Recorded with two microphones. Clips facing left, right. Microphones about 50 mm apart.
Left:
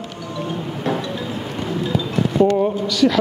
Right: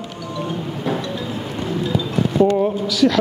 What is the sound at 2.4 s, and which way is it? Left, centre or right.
Speech, centre.